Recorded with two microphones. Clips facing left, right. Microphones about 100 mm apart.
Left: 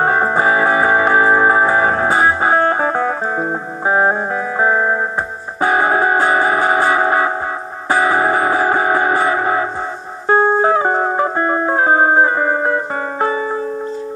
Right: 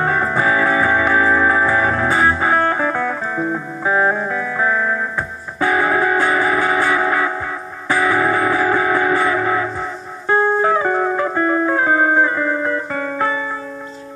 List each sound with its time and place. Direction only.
0.0 s music: 30° left (ahead or behind)